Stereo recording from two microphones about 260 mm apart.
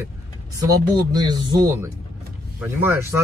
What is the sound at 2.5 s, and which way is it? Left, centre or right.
Speech, centre.